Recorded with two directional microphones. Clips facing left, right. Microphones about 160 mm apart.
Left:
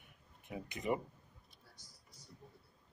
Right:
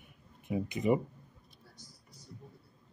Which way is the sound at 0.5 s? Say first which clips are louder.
Right 8 dB; 15° right (ahead or behind).